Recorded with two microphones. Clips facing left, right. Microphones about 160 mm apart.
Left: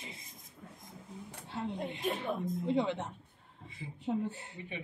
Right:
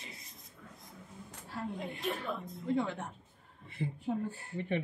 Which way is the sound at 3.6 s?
60° right (ahead or behind).